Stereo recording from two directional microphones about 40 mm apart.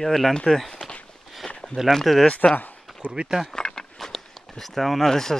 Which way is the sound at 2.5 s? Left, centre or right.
Left.